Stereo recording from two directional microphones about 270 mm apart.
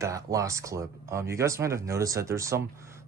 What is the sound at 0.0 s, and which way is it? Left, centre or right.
Speech, centre.